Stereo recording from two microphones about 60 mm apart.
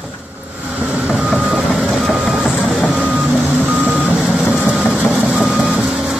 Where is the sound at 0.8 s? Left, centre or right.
Centre.